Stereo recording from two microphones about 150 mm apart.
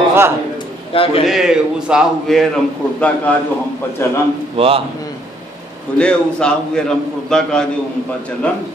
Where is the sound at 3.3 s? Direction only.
10° left (ahead or behind).